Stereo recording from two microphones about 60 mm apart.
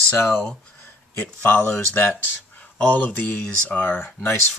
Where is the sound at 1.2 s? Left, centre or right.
Left.